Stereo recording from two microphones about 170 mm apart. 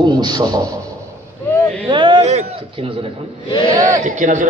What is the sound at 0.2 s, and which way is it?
Speech, 25° right (ahead or behind).